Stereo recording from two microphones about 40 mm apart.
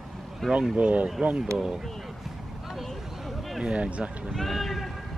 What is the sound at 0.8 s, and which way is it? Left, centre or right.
Speech, right.